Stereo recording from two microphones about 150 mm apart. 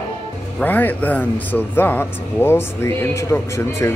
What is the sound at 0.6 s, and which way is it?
A man's voice, 10° left (ahead or behind).